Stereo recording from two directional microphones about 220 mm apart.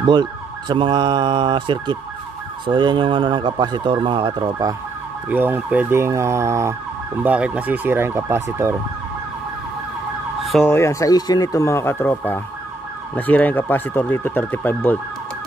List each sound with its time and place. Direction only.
0.0 s speech: 20° right (ahead or behind)
5.3 s emergency vehicle: 10° right (ahead or behind)
10.4 s ambulance: centre (ahead or behind)
10.7 s emergency vehicle: 15° left (ahead or behind)